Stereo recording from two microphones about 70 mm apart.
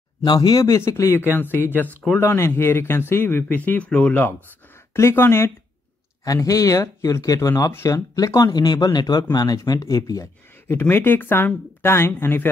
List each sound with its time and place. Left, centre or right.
0.2 s speech: left
1.3 s speech: left
4.9 s speech: left
6.2 s speech: left
8.4 s speech: left
9.7 s speech: left